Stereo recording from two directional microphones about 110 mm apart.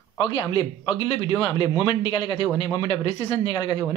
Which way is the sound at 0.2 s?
45° left (ahead or behind).